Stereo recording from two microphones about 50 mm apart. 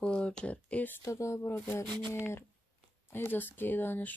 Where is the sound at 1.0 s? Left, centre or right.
Left.